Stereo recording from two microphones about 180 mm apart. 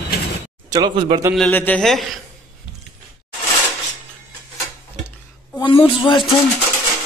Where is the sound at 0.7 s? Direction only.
25° right (ahead or behind).